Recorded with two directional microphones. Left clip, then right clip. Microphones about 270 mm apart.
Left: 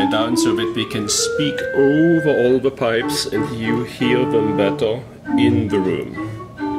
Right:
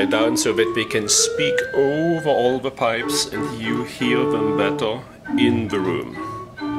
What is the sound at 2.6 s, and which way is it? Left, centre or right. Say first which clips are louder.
Speech: left 3 dB; right.